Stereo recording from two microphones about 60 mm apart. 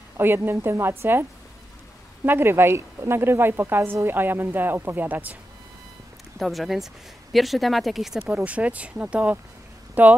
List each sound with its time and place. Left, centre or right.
0.2 s a woman's voice: right
2.2 s a woman's voice: right
6.3 s speech: centre
8.5 s speech: right